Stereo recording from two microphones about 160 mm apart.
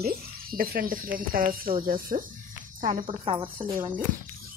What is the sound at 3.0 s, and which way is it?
Speech, 35° right (ahead or behind).